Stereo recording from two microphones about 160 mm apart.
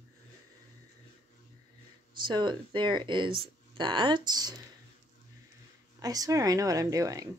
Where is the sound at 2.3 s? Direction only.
30° right (ahead or behind).